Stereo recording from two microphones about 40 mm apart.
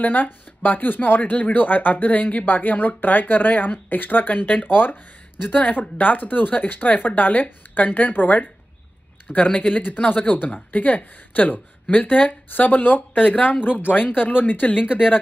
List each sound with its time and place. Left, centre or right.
0.0 s speech: left
9.8 s speech: left